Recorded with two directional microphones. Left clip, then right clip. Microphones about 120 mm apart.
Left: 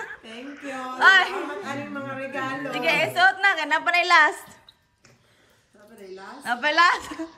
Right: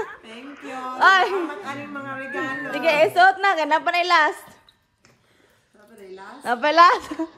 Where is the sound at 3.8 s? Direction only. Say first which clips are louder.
Left 4 dB; 35° right (ahead or behind).